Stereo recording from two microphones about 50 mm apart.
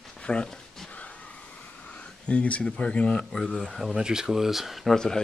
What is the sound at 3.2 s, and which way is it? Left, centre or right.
Speech, centre.